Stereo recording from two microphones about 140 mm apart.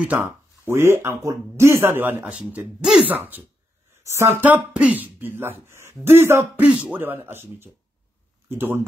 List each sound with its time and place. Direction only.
0.7 s speech: 20° right (ahead or behind)